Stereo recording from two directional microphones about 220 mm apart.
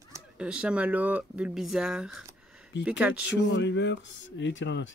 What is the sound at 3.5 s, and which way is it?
Speech, 55° left (ahead or behind).